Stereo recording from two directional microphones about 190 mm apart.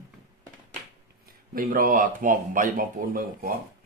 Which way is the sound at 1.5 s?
50° right (ahead or behind).